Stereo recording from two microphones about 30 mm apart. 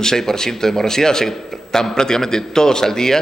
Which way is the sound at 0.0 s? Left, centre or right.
Centre.